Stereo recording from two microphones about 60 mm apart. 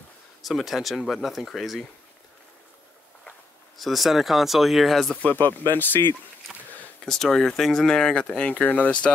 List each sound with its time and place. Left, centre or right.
0.4 s speech: centre
3.3 s speech: centre
5.1 s speech: left
6.5 s a sound: centre
7.1 s speech: centre; by 8.9 s left